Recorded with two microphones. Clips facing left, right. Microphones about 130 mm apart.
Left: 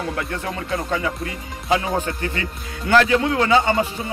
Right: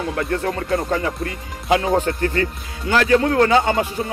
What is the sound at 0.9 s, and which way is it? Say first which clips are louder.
Speech: right 2 dB; 50° right (ahead or behind).